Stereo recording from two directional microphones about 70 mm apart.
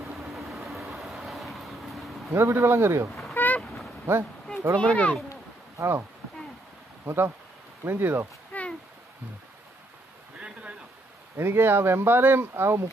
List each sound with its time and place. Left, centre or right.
0.0 s vehicle: centre
0.8 s train: centre
2.3 s speech: right
3.1 s goose: centre
3.3 s boat: left
3.6 s a sound: centre
4.7 s speech: centre
5.8 s speech: right
7.1 s speech: right
8.5 s a sound: left
11.3 s speech: right